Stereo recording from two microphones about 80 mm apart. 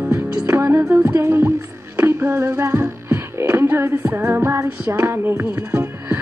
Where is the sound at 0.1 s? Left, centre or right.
Right.